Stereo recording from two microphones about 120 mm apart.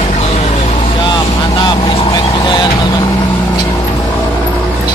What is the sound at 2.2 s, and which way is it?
Vehicle, 40° left (ahead or behind).